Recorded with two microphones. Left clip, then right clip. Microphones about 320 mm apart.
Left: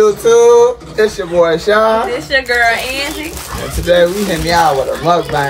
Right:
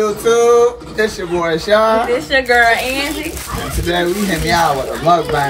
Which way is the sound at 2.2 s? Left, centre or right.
Centre.